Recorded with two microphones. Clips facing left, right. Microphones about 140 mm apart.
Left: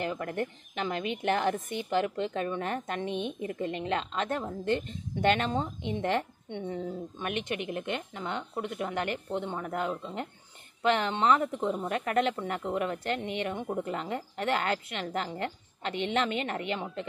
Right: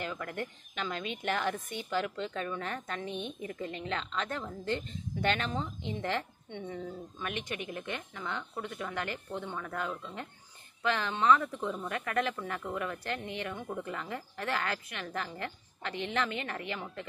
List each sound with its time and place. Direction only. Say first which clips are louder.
0.0 s speech: left 5 dB; 25° left (ahead or behind)